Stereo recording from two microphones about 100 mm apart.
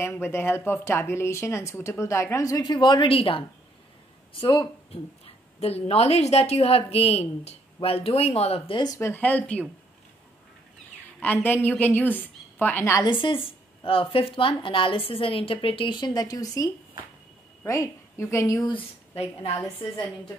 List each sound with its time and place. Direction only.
0.0 s speech: 25° left (ahead or behind)
2.6 s speech: 50° left (ahead or behind)
5.2 s a woman's voice: 85° left
8.7 s speech: 40° left (ahead or behind)
9.0 s a woman's voice: 15° left (ahead or behind)
11.1 s a woman's voice: 15° left (ahead or behind)
13.0 s a woman's voice: 55° left (ahead or behind); by 18.6 s 30° left (ahead or behind)
18.6 s speech: 55° left (ahead or behind)
19.1 s a woman's voice: 90° left